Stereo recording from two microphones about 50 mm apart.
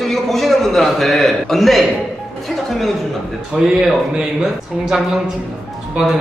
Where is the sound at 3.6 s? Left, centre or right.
Centre.